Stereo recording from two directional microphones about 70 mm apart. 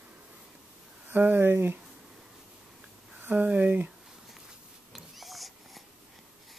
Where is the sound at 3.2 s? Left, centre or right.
Right.